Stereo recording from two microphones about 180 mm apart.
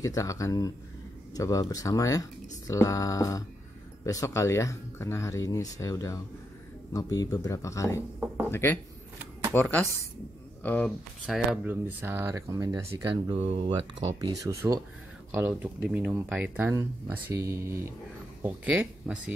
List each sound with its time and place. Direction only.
0.0 s speech: 20° left (ahead or behind)
11.2 s speech: 5° right (ahead or behind)
12.8 s speech: 30° right (ahead or behind)
14.2 s speech: 20° right (ahead or behind)